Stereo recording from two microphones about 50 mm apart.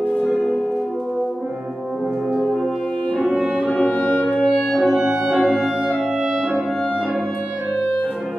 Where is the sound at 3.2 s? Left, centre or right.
Centre.